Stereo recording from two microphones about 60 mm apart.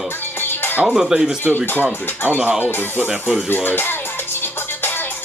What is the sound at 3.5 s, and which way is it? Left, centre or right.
Music, left.